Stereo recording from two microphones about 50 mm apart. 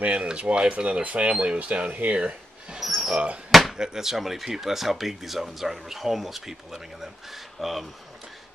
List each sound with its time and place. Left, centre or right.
0.0 s speech: right
2.7 s a sound: centre
3.7 s speech: centre